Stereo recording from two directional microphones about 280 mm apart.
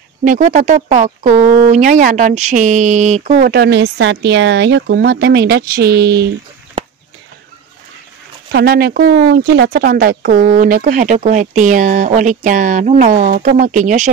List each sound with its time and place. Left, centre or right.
0.2 s speech: right
8.5 s speech: right